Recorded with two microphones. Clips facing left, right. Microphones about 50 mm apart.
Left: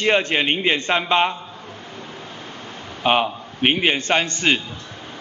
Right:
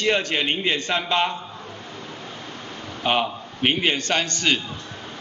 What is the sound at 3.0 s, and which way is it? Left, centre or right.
A man's voice, left.